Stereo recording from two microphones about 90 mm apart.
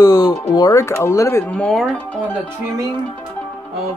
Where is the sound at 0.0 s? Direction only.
45° left (ahead or behind).